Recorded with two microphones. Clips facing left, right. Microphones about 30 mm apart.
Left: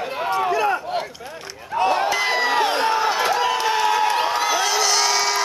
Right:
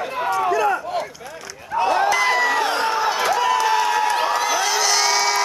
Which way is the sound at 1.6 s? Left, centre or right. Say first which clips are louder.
Right 1 dB; centre.